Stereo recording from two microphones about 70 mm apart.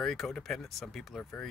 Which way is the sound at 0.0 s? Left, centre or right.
Centre.